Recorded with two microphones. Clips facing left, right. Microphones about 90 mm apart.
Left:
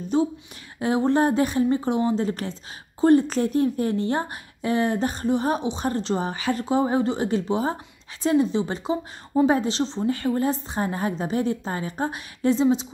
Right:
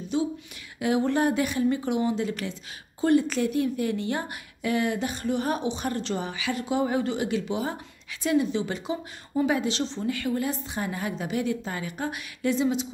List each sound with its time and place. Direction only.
0.1 s a woman's voice: 40° left (ahead or behind)